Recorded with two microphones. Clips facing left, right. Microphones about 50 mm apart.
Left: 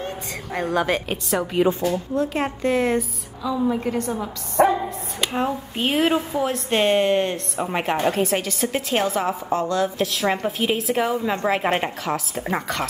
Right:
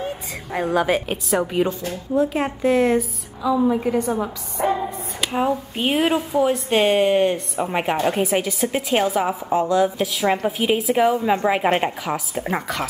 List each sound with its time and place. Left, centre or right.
0.0 s a woman's voice: centre
4.6 s music: left
5.2 s speech: centre